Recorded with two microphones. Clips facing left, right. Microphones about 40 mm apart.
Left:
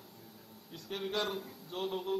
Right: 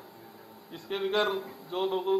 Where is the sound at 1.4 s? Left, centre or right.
Right.